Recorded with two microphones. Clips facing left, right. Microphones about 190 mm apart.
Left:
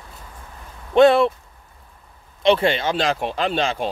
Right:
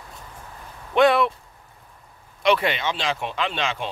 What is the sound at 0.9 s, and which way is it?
Speech, 30° left (ahead or behind).